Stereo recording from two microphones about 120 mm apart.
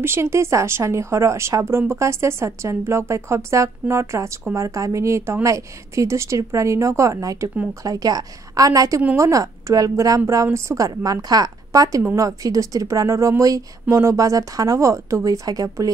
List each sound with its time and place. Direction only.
0.0 s a woman's voice: 20° right (ahead or behind)